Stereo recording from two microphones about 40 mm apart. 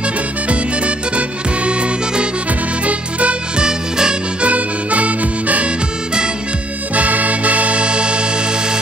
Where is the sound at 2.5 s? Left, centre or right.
Right.